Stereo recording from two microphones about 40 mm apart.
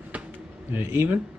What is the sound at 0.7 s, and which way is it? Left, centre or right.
Speech, right.